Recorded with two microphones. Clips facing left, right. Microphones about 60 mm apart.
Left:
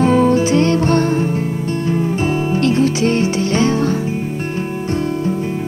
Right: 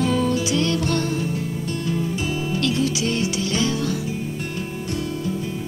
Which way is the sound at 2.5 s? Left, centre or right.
Left.